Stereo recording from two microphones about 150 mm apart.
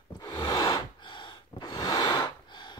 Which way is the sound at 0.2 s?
25° left (ahead or behind).